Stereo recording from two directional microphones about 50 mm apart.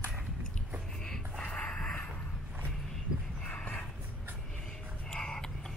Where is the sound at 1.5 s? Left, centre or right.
Left.